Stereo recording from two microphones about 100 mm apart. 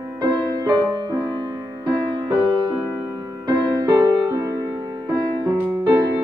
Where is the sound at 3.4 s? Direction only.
45° right (ahead or behind).